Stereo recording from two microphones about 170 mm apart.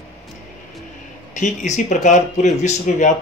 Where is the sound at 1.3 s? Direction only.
45° left (ahead or behind).